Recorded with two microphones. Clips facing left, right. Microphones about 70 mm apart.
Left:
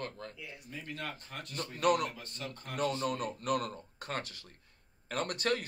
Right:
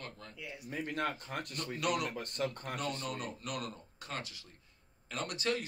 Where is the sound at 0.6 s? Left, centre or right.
Right.